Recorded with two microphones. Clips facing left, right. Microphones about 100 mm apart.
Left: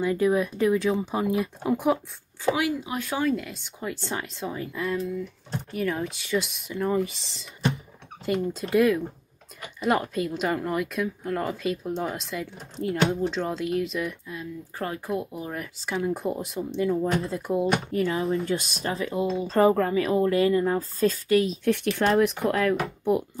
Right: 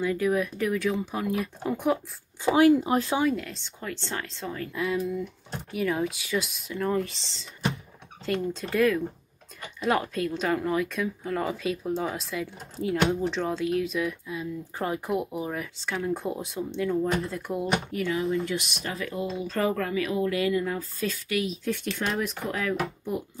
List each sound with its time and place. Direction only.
0.0 s speech: 25° left (ahead or behind)
1.6 s speech: centre (ahead or behind)
2.5 s speech: 40° right (ahead or behind)
3.3 s a woman's voice: 5° left (ahead or behind)
4.7 s speech: centre (ahead or behind)
8.3 s speech: 5° left (ahead or behind); by 15.5 s 15° right (ahead or behind)
15.5 s speech: 5° left (ahead or behind)
17.2 s speech: 25° left (ahead or behind)
22.0 s speech: 70° left (ahead or behind)